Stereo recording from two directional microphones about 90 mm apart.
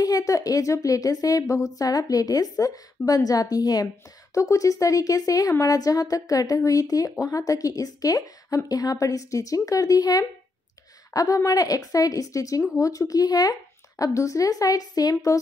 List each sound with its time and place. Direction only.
0.0 s a woman's voice: 40° left (ahead or behind)